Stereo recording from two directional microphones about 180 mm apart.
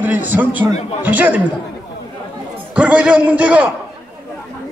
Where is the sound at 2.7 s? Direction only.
5° right (ahead or behind).